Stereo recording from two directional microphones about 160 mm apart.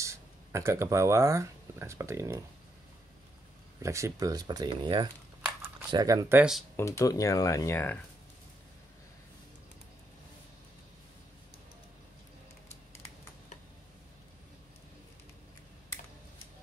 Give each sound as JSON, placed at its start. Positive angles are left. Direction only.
{"t": 0.0, "sound": "speech", "side_deg": -20}
{"t": 3.8, "sound": "speech", "side_deg": -20}
{"t": 6.8, "sound": "speech", "side_deg": 20}